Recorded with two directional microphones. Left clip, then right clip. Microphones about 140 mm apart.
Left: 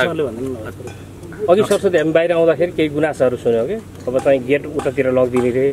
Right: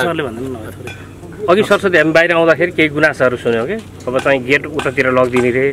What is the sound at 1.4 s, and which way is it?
Speech, 30° right (ahead or behind).